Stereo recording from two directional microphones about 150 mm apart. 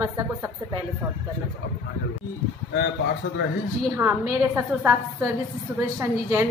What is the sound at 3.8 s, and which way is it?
A woman's voice, 20° right (ahead or behind).